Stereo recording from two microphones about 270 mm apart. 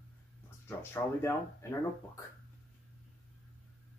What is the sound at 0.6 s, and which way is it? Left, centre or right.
Speech, centre.